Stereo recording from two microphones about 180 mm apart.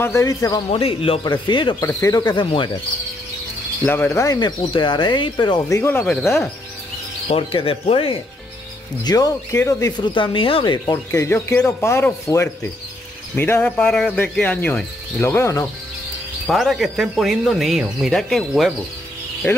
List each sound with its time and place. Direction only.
0.0 s speech: 15° left (ahead or behind)
0.7 s speech: 30° left (ahead or behind)
3.8 s speech: 10° left (ahead or behind)
7.2 s speech: 30° left (ahead or behind)
9.0 s speech: 20° left (ahead or behind)
16.4 s speech: centre (ahead or behind)